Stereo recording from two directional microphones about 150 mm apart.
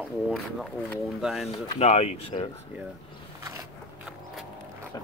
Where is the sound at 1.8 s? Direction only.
45° left (ahead or behind).